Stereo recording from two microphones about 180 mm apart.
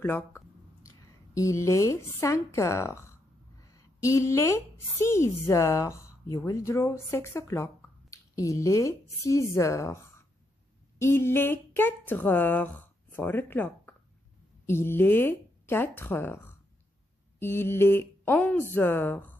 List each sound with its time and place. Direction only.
0.0 s a woman's voice: 10° left (ahead or behind)